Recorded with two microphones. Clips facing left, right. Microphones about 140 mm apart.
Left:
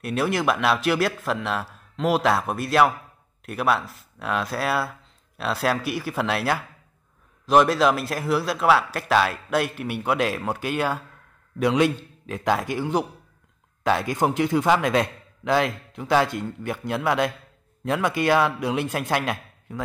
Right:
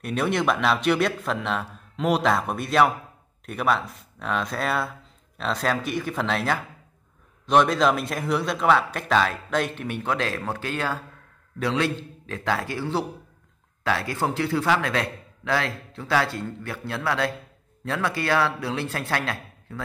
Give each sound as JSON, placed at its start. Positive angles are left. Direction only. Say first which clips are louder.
{"t": 0.0, "sound": "a man's voice", "louder": "left 1 dB", "side_deg": 5}